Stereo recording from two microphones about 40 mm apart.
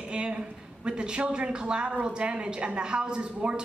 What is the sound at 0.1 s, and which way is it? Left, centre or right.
Speech, right.